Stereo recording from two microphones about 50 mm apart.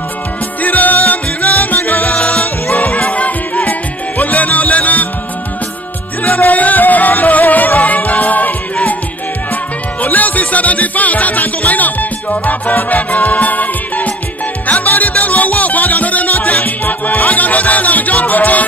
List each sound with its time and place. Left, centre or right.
0.6 s music: left
2.1 s music: left
2.4 s music: left
6.2 s music: left
10.0 s music: left